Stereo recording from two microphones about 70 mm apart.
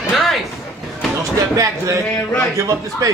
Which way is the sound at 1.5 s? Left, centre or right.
Right.